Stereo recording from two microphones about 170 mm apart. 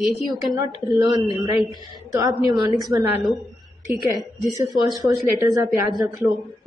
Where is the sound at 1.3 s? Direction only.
25° right (ahead or behind).